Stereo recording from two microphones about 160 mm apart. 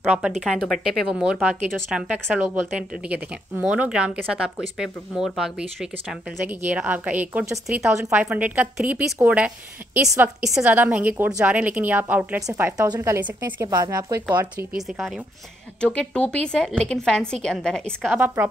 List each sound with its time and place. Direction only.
0.0 s a woman's voice: 5° right (ahead or behind)
14.8 s speech: centre (ahead or behind)
18.1 s a woman's voice: 10° right (ahead or behind)